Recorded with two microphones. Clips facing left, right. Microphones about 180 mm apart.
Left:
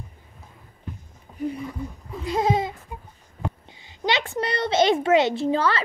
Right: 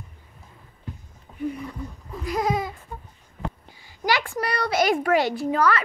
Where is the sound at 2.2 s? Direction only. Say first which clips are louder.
Left 2 dB; 25° left (ahead or behind).